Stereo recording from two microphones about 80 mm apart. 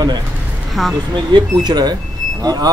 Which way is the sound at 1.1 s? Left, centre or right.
Right.